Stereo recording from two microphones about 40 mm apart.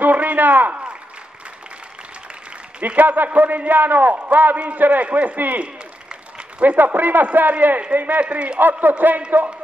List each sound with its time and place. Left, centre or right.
0.0 s a sound: right
3.0 s a man's voice: right
6.6 s a man's voice: right
8.7 s a man's voice: right